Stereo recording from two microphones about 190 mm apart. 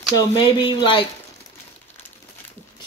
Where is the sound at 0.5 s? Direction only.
25° left (ahead or behind).